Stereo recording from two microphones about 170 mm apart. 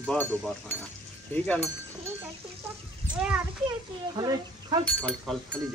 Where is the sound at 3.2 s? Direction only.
5° right (ahead or behind).